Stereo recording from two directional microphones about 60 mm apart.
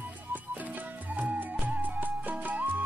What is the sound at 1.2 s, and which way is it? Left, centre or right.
Music, right.